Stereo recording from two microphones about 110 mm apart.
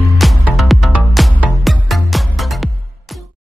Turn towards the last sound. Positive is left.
turn(degrees=0)  # may be behind; listen again after turning